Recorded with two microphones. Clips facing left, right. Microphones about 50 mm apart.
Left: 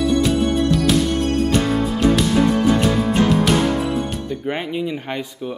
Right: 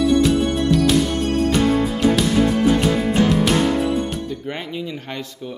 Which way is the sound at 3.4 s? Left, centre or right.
Centre.